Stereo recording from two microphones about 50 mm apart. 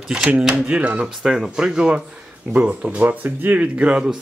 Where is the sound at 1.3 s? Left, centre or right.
Centre.